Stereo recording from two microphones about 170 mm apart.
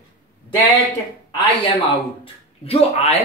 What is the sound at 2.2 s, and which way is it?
Speech, 35° left (ahead or behind).